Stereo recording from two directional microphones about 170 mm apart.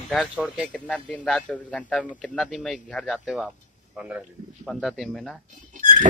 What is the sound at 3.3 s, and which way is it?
Speech, 5° right (ahead or behind).